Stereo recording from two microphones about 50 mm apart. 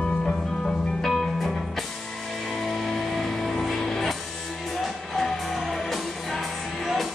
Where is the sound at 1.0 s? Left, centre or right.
Centre.